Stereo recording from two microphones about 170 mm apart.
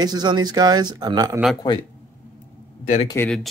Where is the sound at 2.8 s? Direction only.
45° left (ahead or behind).